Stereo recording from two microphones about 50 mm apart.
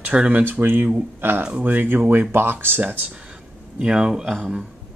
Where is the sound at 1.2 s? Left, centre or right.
Right.